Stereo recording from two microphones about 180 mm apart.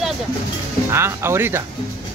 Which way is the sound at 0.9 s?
15° right (ahead or behind).